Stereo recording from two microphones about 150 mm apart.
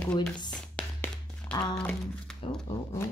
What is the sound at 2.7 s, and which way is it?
Speech, 20° left (ahead or behind).